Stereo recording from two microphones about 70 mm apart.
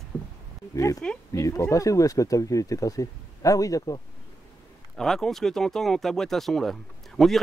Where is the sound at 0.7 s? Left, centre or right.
Left.